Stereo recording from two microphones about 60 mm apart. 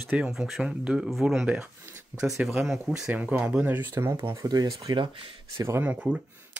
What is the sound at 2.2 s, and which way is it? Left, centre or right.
Speech, centre.